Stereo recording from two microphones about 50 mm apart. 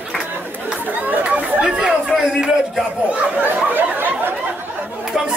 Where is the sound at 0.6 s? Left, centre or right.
Right.